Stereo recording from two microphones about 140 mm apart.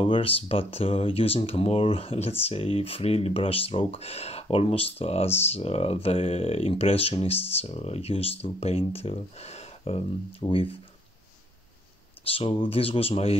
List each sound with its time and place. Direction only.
0.0 s speech: 40° left (ahead or behind)
12.3 s speech: 40° left (ahead or behind)